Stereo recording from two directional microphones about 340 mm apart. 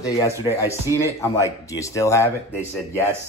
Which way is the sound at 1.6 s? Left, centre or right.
Centre.